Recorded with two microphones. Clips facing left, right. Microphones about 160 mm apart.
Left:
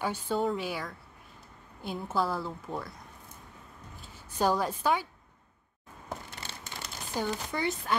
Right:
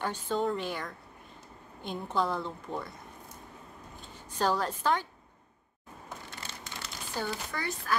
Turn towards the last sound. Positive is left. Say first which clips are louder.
# left 4 dB
turn(degrees=20)  # may be behind; listen again after turning